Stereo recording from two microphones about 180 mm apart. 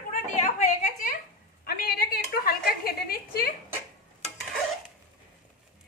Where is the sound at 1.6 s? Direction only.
60° left (ahead or behind).